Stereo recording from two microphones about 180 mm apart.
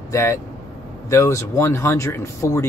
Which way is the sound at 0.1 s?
15° left (ahead or behind).